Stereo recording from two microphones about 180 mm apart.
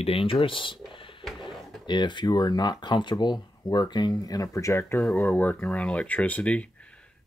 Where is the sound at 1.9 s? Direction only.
25° left (ahead or behind); by 6.6 s 10° left (ahead or behind).